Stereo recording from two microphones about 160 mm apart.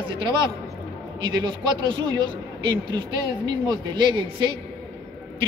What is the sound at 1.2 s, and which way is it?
Speech, 30° right (ahead or behind).